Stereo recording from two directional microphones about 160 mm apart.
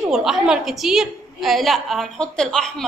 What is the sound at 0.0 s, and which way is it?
A woman's voice, centre (ahead or behind).